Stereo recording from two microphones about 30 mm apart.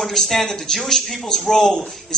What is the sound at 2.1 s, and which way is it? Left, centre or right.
Speech, left.